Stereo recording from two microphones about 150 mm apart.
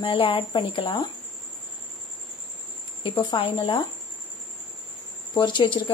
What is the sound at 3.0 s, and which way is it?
Speech, 35° left (ahead or behind).